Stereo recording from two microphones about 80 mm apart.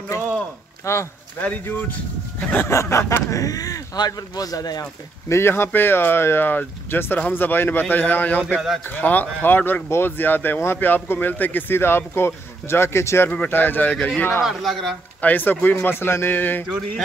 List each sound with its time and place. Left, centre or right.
0.8 s speech: left
2.7 s speech: left
5.3 s speech: left
13.3 s speech: left
14.4 s a man's voice: centre
15.2 s speech: left